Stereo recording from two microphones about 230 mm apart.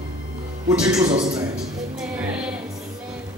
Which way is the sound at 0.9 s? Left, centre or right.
Right.